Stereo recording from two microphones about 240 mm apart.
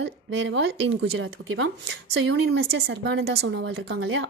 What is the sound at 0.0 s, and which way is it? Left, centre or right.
Speech, right.